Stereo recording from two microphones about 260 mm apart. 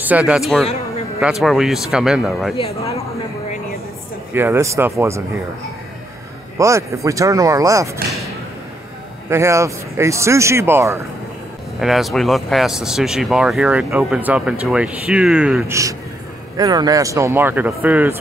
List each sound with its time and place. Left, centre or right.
0.0 s speech: centre
2.5 s speech: centre
4.3 s speech: centre
6.6 s speech: centre
9.3 s speech: centre